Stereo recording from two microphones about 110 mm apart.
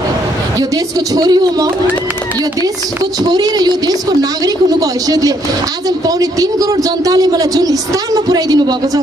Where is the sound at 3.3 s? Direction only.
35° right (ahead or behind).